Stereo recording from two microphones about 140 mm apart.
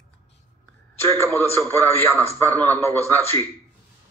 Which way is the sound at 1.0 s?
15° left (ahead or behind).